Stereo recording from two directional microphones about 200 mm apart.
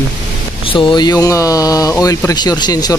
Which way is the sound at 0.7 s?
25° left (ahead or behind).